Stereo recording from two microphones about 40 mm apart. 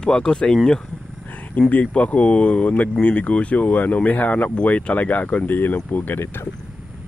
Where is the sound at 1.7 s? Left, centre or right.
Left.